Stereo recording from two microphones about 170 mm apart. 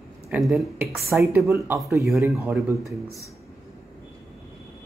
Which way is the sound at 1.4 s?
15° right (ahead or behind).